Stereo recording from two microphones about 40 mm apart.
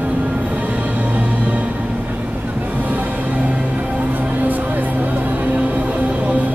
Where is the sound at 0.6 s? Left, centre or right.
Right.